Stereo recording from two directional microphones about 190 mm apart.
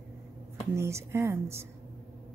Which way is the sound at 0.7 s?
15° right (ahead or behind).